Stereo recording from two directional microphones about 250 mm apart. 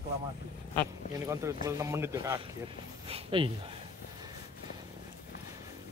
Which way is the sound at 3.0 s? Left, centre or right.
Right.